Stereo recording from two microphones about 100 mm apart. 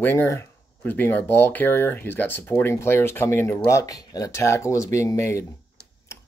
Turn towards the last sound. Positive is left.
turn(degrees=30)  # may be behind; listen again after turning